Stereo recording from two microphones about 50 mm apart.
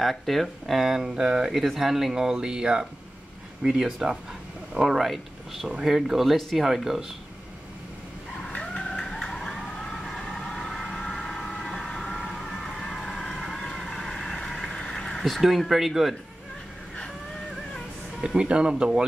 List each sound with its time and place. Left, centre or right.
0.0 s speech: centre
8.4 s vehicle: centre
8.9 s emergency vehicle: centre
11.5 s vehicle: centre
18.2 s speech: centre